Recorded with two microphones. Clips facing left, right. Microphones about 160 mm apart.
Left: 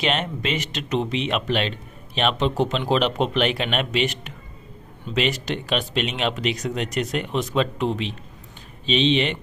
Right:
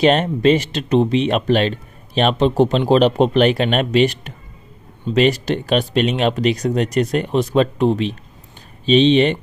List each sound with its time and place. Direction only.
0.0 s speech: 40° right (ahead or behind)